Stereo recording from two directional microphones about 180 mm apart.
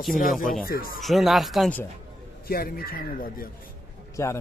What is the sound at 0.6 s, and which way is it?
Speech, 55° left (ahead or behind).